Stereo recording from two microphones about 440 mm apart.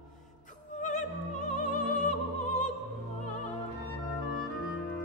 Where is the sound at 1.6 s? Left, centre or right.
Centre.